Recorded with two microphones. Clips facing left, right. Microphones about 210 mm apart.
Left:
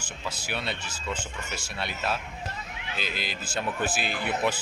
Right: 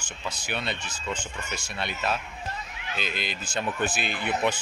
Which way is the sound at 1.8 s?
5° left (ahead or behind).